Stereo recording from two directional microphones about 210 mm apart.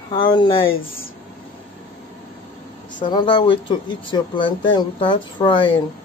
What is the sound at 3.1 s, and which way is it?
Speech, 20° left (ahead or behind).